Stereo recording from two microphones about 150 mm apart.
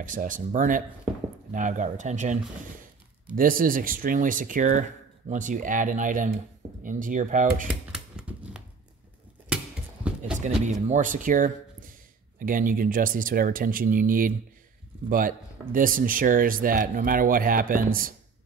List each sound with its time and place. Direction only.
0.0 s speech: 60° right (ahead or behind)
3.3 s speech: 70° right (ahead or behind)
7.9 s a sound: 5° right (ahead or behind)
10.4 s speech: 50° right (ahead or behind); by 18.1 s 65° right (ahead or behind)